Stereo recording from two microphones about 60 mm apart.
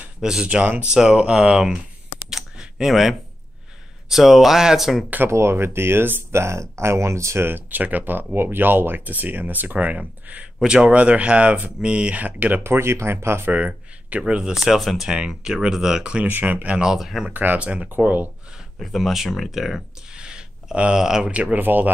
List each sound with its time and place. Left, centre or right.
0.2 s speech: centre
2.2 s a sound: centre
2.9 s speech: centre
5.3 s speech: right
6.4 s speech: right
7.5 s speech: right
12.6 s speech: right
13.5 s speech: right
14.5 s speech: centre
15.0 s speech: centre
16.3 s speech: right
16.8 s speech: centre
17.3 s speech: right
18.8 s speech: centre; by 21.9 s right